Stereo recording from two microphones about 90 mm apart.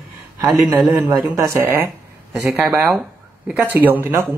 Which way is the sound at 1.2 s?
35° right (ahead or behind).